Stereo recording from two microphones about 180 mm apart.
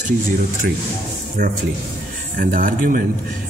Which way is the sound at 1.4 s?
55° right (ahead or behind).